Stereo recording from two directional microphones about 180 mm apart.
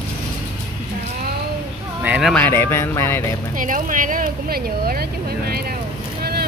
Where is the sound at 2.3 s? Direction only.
10° left (ahead or behind).